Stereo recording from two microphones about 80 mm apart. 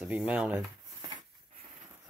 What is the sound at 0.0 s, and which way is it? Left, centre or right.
Speech, centre.